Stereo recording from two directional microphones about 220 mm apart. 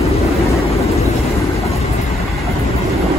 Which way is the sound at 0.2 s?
30° left (ahead or behind).